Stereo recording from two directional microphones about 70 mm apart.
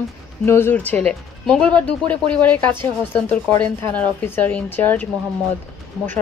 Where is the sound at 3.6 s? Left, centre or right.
Left.